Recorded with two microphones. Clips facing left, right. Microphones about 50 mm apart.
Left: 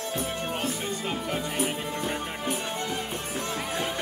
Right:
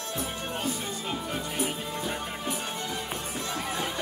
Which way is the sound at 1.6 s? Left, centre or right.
Left.